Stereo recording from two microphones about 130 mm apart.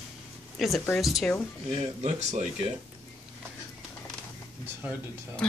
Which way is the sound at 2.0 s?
60° right (ahead or behind).